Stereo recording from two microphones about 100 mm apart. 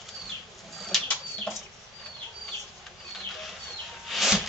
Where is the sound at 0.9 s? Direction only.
Centre (ahead or behind).